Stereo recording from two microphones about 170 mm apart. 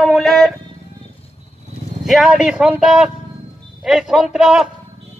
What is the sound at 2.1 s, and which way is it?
A woman's voice, centre (ahead or behind).